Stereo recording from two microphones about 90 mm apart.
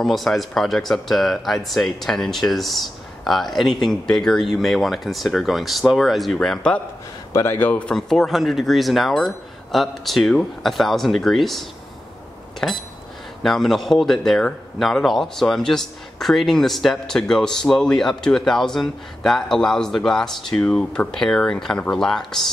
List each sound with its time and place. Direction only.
0.0 s a man's voice: 5° left (ahead or behind)
7.5 s speech: 20° left (ahead or behind)
7.9 s a man's voice: 5° left (ahead or behind)
12.5 s a sound: centre (ahead or behind)
13.4 s a man's voice: centre (ahead or behind)